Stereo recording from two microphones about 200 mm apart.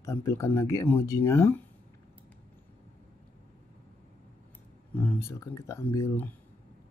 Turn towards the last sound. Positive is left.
turn(degrees=10)  # may be behind; listen again after turning